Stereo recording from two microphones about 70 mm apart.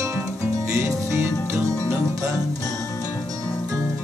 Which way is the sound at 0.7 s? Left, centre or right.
Right.